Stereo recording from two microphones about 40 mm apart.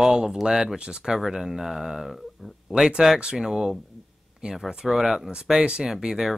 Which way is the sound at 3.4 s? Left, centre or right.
Centre.